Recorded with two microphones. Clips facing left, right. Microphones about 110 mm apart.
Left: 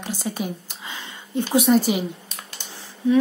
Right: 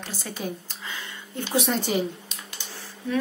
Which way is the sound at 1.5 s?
10° left (ahead or behind).